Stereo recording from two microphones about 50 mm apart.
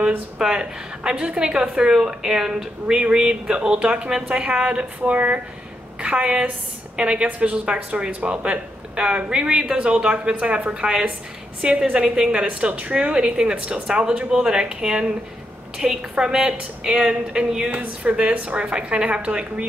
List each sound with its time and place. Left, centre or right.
0.4 s a woman's voice: centre
17.6 s speech: right
18.7 s speech: centre